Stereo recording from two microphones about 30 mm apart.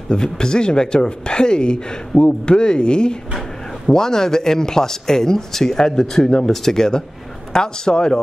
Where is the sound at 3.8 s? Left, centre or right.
Centre.